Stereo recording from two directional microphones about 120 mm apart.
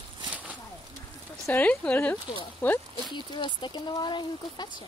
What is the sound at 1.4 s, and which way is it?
Speech, 15° left (ahead or behind).